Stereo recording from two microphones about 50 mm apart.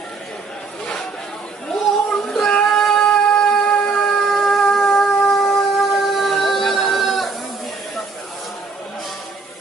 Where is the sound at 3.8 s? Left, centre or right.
Centre.